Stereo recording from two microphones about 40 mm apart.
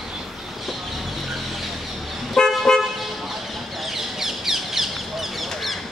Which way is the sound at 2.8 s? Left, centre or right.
Centre.